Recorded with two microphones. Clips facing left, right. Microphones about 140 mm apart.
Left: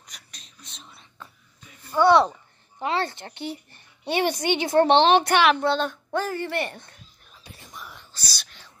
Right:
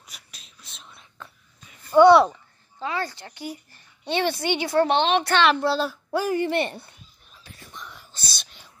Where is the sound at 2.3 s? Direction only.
25° left (ahead or behind).